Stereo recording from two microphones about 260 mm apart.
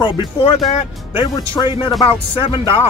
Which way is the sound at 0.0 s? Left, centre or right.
Centre.